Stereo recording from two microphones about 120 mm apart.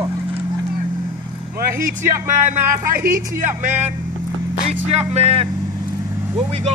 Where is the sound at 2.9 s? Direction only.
20° right (ahead or behind).